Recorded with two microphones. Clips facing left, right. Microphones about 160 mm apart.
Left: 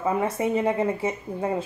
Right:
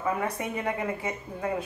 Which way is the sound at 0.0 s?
25° left (ahead or behind).